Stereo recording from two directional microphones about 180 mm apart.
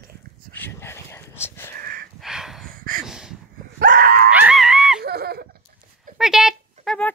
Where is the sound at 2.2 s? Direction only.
Centre (ahead or behind).